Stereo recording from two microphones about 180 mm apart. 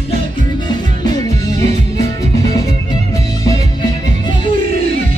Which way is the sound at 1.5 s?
35° right (ahead or behind).